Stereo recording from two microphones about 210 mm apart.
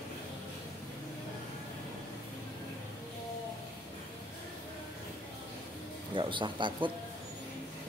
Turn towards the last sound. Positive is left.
turn(degrees=-25)  # may be behind; listen again after turning